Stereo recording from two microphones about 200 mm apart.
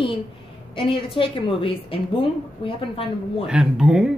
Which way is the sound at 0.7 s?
25° left (ahead or behind).